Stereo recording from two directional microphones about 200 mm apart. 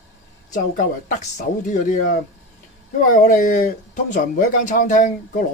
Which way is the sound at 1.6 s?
40° left (ahead or behind).